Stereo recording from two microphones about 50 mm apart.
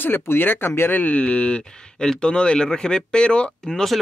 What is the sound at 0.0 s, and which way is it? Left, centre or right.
Speech, left.